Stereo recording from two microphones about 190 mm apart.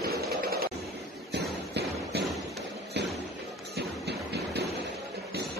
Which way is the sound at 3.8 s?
60° right (ahead or behind).